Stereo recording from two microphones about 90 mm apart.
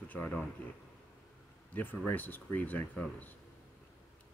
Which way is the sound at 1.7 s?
20° left (ahead or behind).